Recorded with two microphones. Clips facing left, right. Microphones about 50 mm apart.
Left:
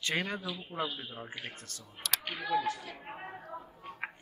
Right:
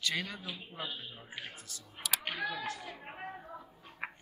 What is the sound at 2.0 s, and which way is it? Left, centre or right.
Speech, centre.